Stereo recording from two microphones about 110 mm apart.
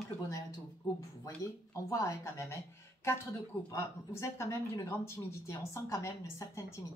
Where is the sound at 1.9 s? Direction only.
30° left (ahead or behind).